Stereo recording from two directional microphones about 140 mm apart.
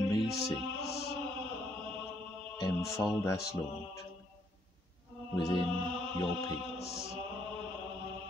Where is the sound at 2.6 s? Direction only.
25° left (ahead or behind).